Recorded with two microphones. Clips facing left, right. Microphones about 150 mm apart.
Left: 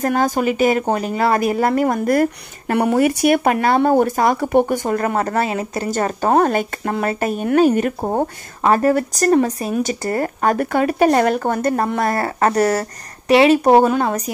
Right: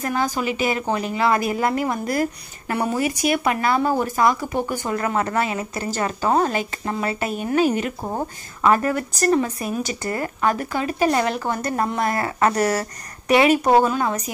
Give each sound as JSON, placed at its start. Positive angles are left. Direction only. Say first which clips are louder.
{"t": 0.0, "sound": "speech", "louder": "left 6 dB", "side_deg": 45}
{"t": 2.8, "sound": "speech", "louder": "left 7 dB", "side_deg": 65}
{"t": 4.9, "sound": "speech", "louder": "left 1 dB", "side_deg": 40}
{"t": 13.7, "sound": "speech", "louder": "left 4 dB", "side_deg": 50}